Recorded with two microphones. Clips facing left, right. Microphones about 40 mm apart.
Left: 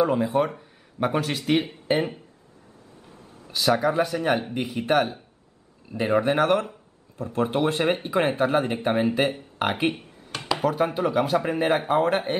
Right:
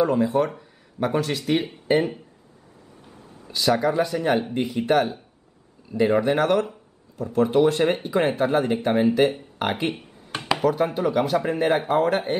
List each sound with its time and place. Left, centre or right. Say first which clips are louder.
0.0 s speech: right 1 dB; centre
3.5 s speech: right 1 dB; centre